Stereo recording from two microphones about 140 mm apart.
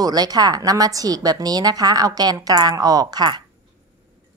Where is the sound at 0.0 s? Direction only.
30° right (ahead or behind).